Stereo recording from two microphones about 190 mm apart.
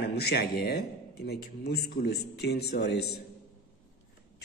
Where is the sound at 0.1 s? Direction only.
60° left (ahead or behind).